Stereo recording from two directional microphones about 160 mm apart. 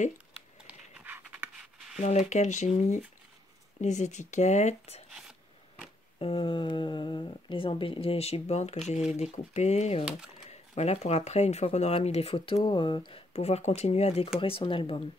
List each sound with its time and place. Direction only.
0.7 s writing: 10° right (ahead or behind)
2.0 s speech: 45° left (ahead or behind)
6.1 s speech: 35° left (ahead or behind)